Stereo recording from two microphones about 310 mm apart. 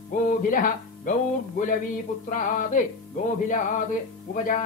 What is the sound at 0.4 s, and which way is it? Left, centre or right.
Speech, left.